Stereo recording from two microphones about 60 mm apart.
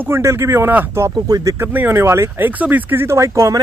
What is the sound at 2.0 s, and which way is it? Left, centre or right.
Speech, right.